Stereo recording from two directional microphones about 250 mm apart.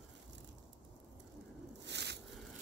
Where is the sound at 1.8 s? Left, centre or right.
Right.